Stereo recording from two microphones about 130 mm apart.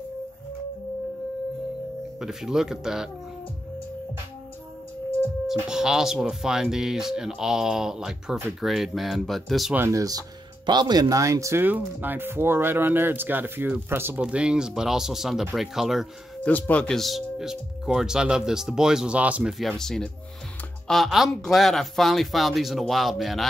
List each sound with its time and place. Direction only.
2.1 s speech: 5° right (ahead or behind)
5.7 s speech: 5° right (ahead or behind)
9.8 s speech: 25° right (ahead or behind); by 16.1 s 5° right (ahead or behind)
16.4 s speech: 10° left (ahead or behind); by 19.5 s 10° right (ahead or behind)
19.6 s speech: 5° left (ahead or behind)